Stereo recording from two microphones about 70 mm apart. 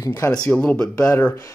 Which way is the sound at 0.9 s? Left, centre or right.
Left.